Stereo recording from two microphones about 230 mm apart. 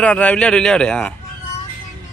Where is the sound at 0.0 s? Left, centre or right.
Centre.